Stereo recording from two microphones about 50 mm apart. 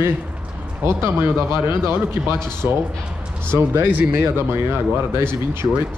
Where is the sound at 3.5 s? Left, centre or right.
Right.